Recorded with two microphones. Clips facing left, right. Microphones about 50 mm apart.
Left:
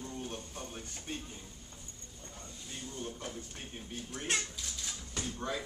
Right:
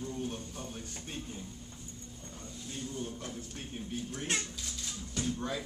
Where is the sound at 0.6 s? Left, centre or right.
Centre.